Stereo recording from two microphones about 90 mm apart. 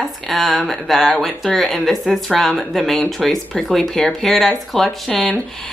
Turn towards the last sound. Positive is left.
turn(degrees=5)  # may be behind; listen again after turning